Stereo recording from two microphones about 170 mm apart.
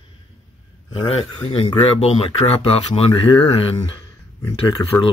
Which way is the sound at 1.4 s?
30° left (ahead or behind).